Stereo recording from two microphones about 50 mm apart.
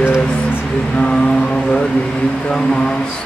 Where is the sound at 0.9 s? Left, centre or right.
Centre.